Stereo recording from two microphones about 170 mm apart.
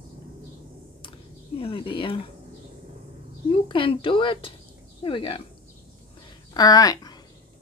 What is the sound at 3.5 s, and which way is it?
A woman's voice, 30° left (ahead or behind).